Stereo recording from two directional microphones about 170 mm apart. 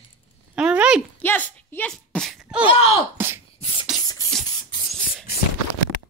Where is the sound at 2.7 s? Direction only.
35° left (ahead or behind).